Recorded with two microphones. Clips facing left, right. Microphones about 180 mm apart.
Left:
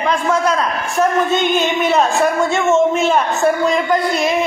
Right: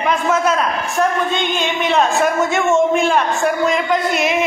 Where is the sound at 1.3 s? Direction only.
45° left (ahead or behind).